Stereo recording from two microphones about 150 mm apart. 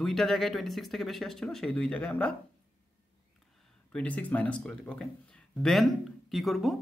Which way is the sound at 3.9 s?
10° left (ahead or behind).